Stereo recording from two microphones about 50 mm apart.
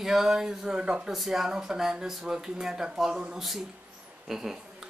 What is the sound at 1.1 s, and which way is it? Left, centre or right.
A man's voice, centre.